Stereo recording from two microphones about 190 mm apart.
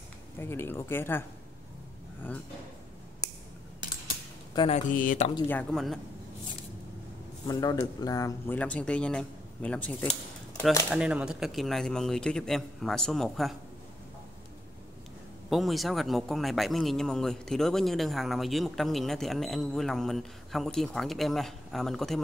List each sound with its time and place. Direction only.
0.4 s speech: 10° left (ahead or behind)
4.6 s speech: 35° left (ahead or behind)
5.5 s speech: 5° left (ahead or behind)
7.4 s speech: 20° left (ahead or behind)
8.5 s speech: 5° left (ahead or behind)
10.9 s speech: 5° right (ahead or behind)
15.5 s speech: centre (ahead or behind)